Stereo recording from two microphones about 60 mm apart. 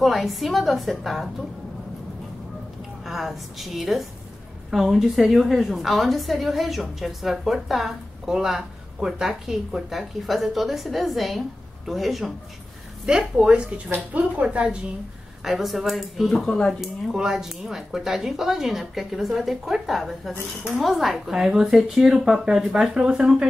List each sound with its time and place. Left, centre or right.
0.0 s a woman's voice: centre
3.1 s a woman's voice: centre
13.0 s speech: centre
15.4 s a woman's voice: centre
16.4 s speech: centre
16.8 s a woman's voice: centre